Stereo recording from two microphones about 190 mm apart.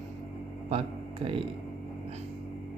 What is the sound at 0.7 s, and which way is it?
Speech, 30° right (ahead or behind).